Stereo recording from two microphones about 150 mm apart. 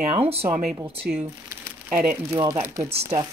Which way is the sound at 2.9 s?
45° right (ahead or behind).